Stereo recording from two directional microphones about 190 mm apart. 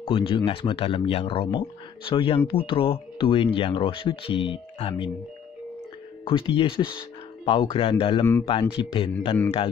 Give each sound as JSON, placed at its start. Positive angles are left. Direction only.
{"t": 0.0, "sound": "speech", "side_deg": 30}
{"t": 6.2, "sound": "speech", "side_deg": 30}